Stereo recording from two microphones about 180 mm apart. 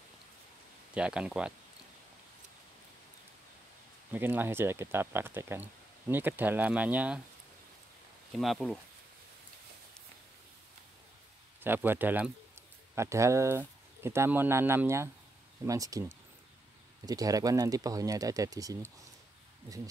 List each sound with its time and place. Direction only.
0.9 s speech: 5° right (ahead or behind)
4.1 s speech: 10° right (ahead or behind)
8.3 s speech: centre (ahead or behind)
11.6 s speech: 10° right (ahead or behind)